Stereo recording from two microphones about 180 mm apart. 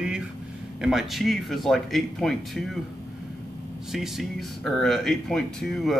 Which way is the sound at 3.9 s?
Centre (ahead or behind).